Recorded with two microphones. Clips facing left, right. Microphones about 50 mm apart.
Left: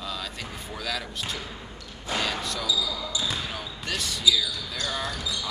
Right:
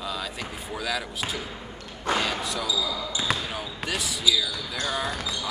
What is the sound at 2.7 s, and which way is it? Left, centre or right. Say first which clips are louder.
Speech: even; right.